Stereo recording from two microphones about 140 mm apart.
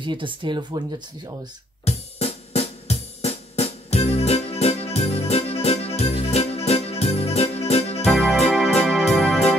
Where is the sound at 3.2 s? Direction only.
50° left (ahead or behind).